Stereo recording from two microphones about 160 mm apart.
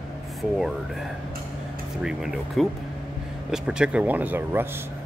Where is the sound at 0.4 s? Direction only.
Centre (ahead or behind).